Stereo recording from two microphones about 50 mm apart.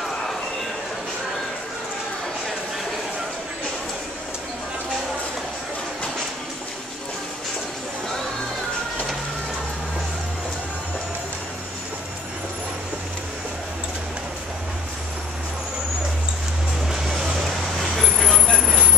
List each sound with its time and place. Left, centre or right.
16.8 s music: centre
18.0 s vehicle: centre